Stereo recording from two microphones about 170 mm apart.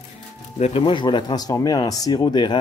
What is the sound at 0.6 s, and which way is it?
Speech, 35° left (ahead or behind).